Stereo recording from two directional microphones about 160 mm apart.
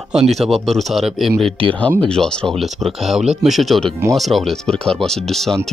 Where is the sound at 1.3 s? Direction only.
35° right (ahead or behind).